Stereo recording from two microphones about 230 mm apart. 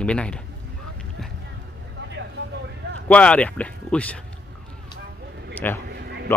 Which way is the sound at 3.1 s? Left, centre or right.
Centre.